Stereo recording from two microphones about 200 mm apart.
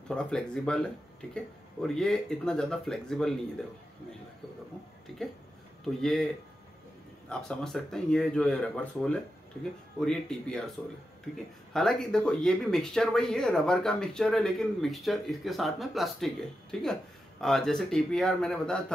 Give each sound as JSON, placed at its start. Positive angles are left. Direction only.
{"t": 0.1, "sound": "speech", "side_deg": 5}
{"t": 5.9, "sound": "speech", "side_deg": 5}
{"t": 7.2, "sound": "speech", "side_deg": 0}
{"t": 11.7, "sound": "speech", "side_deg": 5}